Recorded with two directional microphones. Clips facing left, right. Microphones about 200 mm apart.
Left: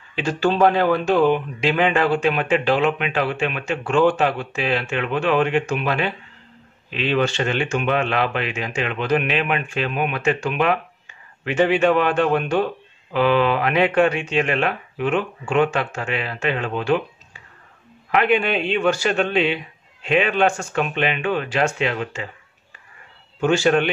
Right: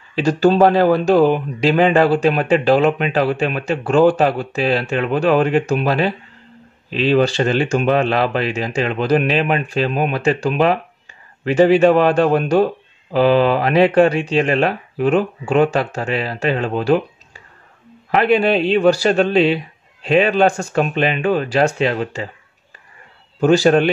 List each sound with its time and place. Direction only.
0.1 s speech: 40° right (ahead or behind)
23.4 s speech: 35° right (ahead or behind)